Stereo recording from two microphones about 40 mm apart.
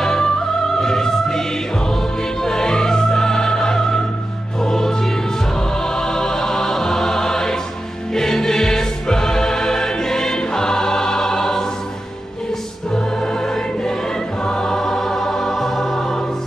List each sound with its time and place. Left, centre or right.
0.0 s music: centre
2.4 s music: centre
8.1 s choir: centre
12.9 s music: centre
14.4 s choir: centre
14.8 s music: centre